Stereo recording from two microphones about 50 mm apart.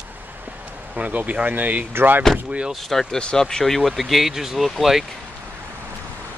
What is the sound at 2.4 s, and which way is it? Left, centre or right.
Speech, right.